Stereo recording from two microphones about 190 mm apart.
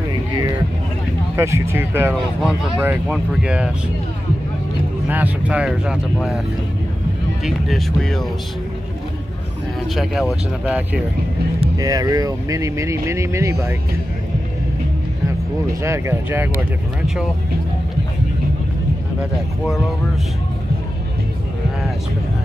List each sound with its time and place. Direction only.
1.3 s speech: 15° right (ahead or behind)
5.1 s speech: 5° right (ahead or behind)
7.4 s speech: centre (ahead or behind)
10.6 s speech: 5° right (ahead or behind)
11.8 s speech: 20° right (ahead or behind)
15.8 s speech: 15° right (ahead or behind)